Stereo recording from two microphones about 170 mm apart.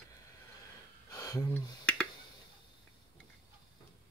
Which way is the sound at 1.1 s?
20° left (ahead or behind).